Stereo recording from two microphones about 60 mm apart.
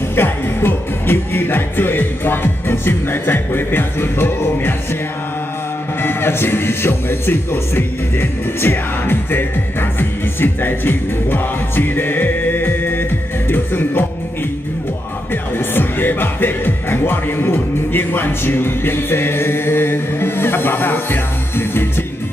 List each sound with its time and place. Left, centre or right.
0.1 s speech: left
6.0 s speech: left
15.5 s speech: left